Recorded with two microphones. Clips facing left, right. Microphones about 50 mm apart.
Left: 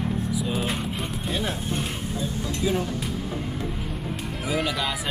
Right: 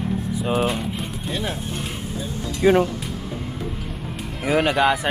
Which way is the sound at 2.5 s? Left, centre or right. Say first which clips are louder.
Right 10 dB; right.